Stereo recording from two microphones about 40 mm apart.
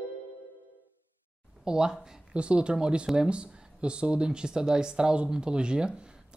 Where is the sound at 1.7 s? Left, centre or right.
Centre.